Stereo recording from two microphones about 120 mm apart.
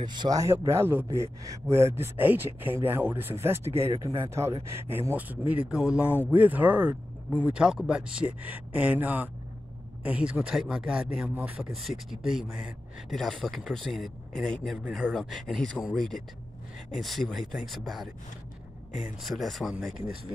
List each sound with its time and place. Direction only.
0.0 s speech: 40° right (ahead or behind)
0.4 s speech: 20° right (ahead or behind); by 18.1 s centre (ahead or behind)
19.2 s speech: centre (ahead or behind)